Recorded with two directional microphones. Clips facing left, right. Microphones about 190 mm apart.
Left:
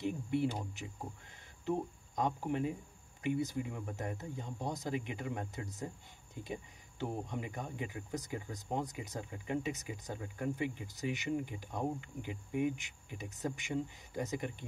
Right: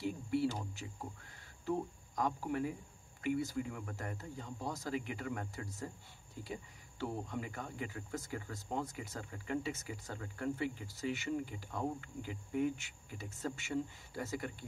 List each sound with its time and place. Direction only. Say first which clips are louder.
0.0 s speech: left 1 dB; 20° left (ahead or behind)